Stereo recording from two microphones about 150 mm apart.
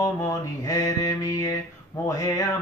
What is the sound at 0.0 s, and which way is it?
Mantra, 20° left (ahead or behind).